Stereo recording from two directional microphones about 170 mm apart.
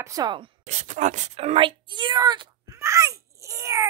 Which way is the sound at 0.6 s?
40° right (ahead or behind).